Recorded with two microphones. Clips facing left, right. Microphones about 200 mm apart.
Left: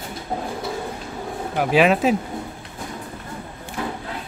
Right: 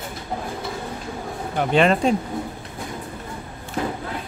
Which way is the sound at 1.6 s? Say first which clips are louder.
Left 1 dB; 5° left (ahead or behind).